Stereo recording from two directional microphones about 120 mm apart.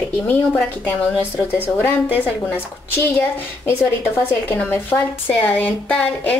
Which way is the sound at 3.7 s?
15° left (ahead or behind).